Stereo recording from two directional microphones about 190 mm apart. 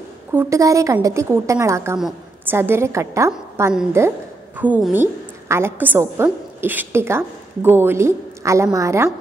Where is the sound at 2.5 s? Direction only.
10° right (ahead or behind).